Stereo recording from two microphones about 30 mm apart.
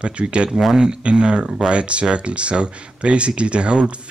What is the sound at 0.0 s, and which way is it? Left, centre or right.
Speech, right.